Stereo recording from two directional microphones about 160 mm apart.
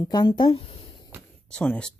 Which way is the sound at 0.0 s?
25° left (ahead or behind).